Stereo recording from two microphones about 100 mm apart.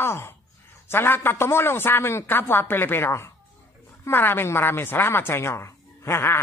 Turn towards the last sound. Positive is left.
turn(degrees=25)  # may be behind; listen again after turning